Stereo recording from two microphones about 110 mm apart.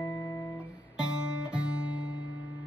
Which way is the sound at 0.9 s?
10° right (ahead or behind).